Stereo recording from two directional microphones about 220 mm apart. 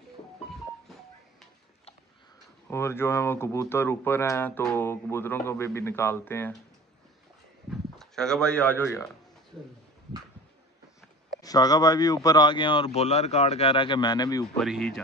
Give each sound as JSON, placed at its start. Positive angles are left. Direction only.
{"t": 2.7, "sound": "speech", "side_deg": 10}
{"t": 7.7, "sound": "speech", "side_deg": 0}
{"t": 11.4, "sound": "speech", "side_deg": 15}
{"t": 14.6, "sound": "speech", "side_deg": 0}